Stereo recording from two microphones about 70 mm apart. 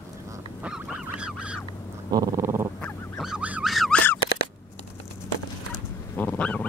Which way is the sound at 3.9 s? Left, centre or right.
Left.